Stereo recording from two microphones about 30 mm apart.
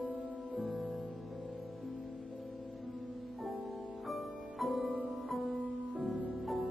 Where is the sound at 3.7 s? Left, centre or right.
Centre.